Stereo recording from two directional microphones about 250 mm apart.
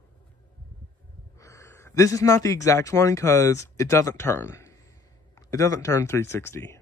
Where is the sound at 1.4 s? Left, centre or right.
Centre.